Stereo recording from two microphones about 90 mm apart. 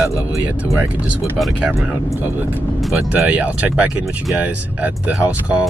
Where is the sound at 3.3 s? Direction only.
15° right (ahead or behind).